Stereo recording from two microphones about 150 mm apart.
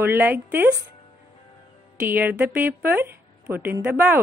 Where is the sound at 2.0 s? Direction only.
10° right (ahead or behind).